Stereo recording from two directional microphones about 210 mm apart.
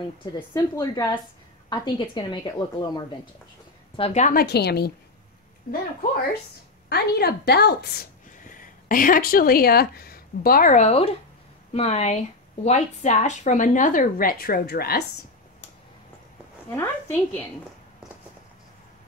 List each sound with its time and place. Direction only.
0.6 s a woman's voice: 20° left (ahead or behind)
3.9 s a woman's voice: 30° left (ahead or behind); by 4.9 s 50° left (ahead or behind)
6.9 s a woman's voice: 50° left (ahead or behind)
16.7 s a woman's voice: 10° left (ahead or behind)